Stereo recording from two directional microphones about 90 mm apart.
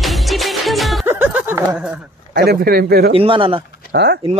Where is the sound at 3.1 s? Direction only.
80° right.